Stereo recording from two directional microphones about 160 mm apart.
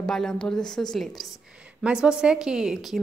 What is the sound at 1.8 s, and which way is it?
A woman's voice, 5° right (ahead or behind).